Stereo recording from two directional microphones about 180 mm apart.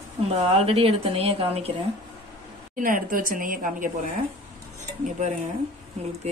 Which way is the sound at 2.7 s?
50° right (ahead or behind).